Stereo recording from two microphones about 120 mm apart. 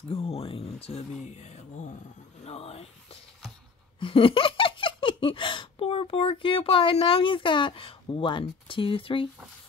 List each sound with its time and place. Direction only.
0.1 s speech: 55° left (ahead or behind)
1.2 s speech: 70° left (ahead or behind)
2.4 s a sound: 60° left (ahead or behind)
4.0 s speech: 50° left (ahead or behind)